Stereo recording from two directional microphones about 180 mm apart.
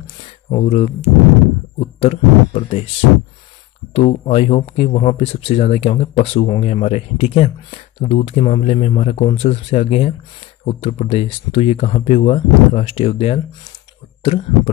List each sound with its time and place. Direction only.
0.2 s speech: 30° left (ahead or behind)
3.9 s speech: 30° left (ahead or behind)